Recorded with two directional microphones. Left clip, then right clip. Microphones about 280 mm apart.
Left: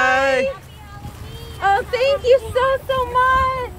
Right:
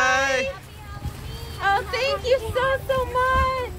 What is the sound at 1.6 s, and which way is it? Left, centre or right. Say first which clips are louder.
Vehicle: left 5 dB; left.